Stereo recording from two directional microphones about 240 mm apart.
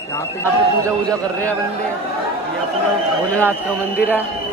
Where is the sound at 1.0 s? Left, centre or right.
Centre.